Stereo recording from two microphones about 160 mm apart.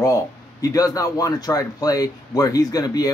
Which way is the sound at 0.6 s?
20° left (ahead or behind).